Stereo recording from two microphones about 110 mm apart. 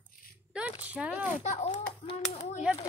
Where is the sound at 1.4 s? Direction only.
90° left.